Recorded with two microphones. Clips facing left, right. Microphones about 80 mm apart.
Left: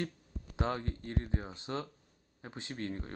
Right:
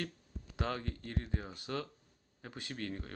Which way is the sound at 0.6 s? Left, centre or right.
Left.